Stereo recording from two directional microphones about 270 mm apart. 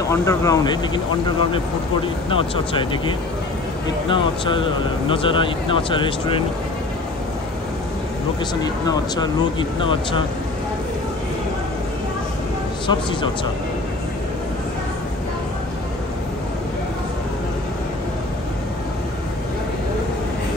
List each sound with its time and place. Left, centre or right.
0.1 s speech: centre
2.2 s speech: centre
4.1 s speech: centre
8.6 s speech: centre